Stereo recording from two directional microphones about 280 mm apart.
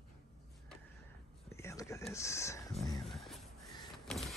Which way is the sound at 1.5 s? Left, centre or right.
Centre.